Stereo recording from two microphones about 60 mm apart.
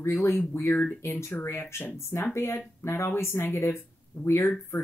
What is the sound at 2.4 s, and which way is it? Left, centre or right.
Speech, left.